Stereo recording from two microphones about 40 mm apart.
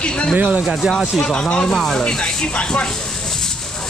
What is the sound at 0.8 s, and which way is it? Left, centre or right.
Speech, centre.